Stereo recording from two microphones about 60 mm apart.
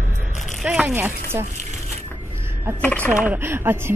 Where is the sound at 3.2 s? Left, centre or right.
Right.